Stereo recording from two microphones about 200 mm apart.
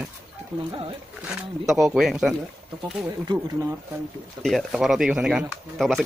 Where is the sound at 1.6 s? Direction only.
Centre (ahead or behind).